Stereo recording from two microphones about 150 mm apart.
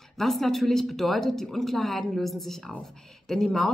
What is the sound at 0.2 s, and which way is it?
A woman's voice, centre (ahead or behind).